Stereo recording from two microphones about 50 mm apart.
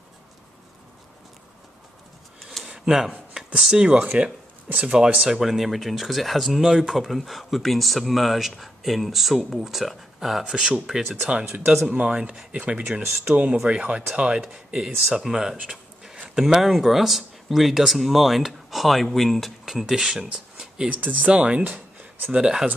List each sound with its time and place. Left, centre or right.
2.7 s a sound: centre
3.5 s speech: centre
4.6 s speech: right
4.9 s speech: centre
10.4 s speech: centre
11.9 s speech: right
15.5 s a sound: centre
16.3 s speech: centre
20.2 s a sound: centre
20.9 s speech: right
21.3 s speech: right
21.6 s a sound: right
22.3 s speech: centre